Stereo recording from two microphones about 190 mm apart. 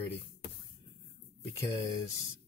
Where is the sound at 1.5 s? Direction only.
15° left (ahead or behind).